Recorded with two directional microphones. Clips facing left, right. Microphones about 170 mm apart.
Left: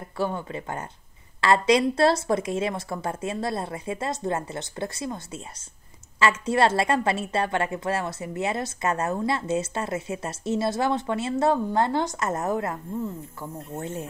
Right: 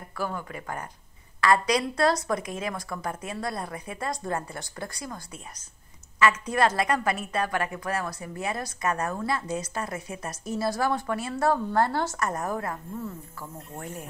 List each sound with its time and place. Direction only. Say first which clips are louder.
0.2 s a woman's voice: left 4 dB; 25° left (ahead or behind)